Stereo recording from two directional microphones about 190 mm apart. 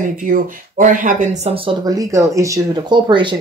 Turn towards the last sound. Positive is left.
turn(degrees=-25)  # may be behind; listen again after turning